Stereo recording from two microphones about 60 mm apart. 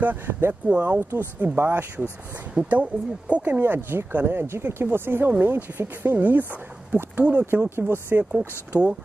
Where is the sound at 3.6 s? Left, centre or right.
Right.